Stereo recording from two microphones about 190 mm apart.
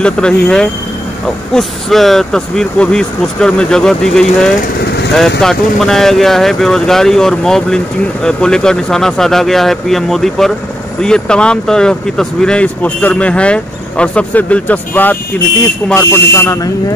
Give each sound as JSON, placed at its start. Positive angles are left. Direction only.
{"t": 0.0, "sound": "speech", "side_deg": 5}